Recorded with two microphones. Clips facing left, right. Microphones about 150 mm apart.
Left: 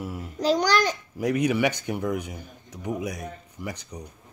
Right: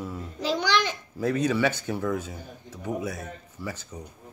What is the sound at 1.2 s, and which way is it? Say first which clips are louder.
Speech: left 1 dB; 15° left (ahead or behind).